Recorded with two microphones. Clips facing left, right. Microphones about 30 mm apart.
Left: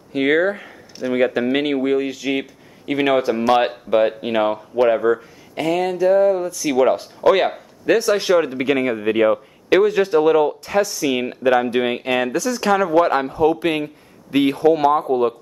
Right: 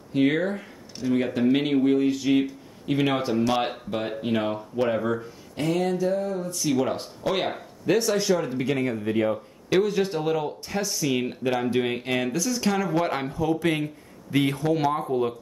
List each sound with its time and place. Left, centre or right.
0.1 s speech: left
1.0 s speech: centre
1.4 s speech: left
3.9 s speech: left
5.6 s speech: left
6.1 s a sound: left
6.7 s speech: left
8.4 s a sound: left
8.7 s speech: left
9.8 s speech: left
10.8 s a sound: left
11.1 s speech: left
13.3 s speech: left
15.0 s speech: left